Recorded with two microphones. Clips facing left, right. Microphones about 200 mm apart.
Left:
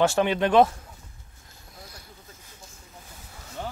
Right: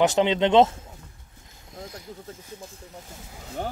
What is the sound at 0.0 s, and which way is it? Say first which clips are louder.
Speech: right 2 dB; 20° right (ahead or behind).